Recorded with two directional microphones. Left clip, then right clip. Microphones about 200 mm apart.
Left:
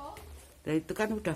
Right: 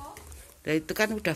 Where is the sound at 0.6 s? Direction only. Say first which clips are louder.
Right 4 dB; 5° left (ahead or behind).